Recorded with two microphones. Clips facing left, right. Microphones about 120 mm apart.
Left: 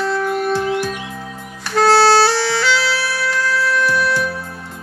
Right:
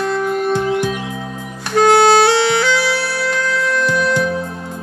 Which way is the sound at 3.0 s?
25° right (ahead or behind).